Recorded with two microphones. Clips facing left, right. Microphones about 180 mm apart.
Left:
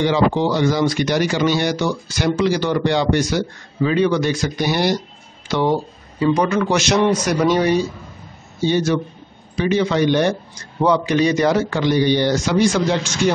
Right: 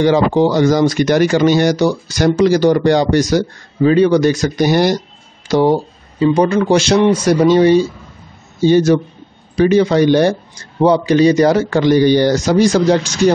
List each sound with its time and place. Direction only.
0.0 s a man's voice: 45° right (ahead or behind)
8.6 s a man's voice: 40° right (ahead or behind)